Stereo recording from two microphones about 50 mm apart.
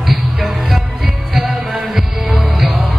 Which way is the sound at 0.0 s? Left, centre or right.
Centre.